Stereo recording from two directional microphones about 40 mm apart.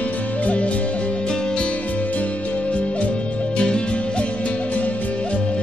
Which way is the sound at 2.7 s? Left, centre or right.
Left.